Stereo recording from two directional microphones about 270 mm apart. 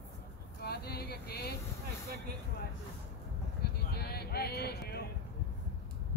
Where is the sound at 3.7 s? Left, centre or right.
Left.